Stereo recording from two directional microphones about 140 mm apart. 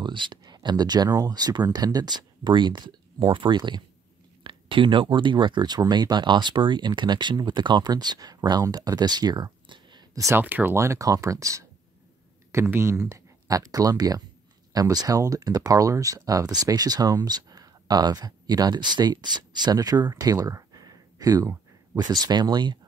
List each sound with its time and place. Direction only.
0.0 s speech: 35° right (ahead or behind)
10.4 s speech: 15° right (ahead or behind)
12.5 s speech: 15° right (ahead or behind)